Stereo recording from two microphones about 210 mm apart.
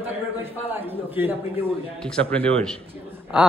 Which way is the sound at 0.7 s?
10° right (ahead or behind).